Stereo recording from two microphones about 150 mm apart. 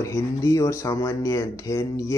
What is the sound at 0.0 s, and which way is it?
Speech, 20° left (ahead or behind).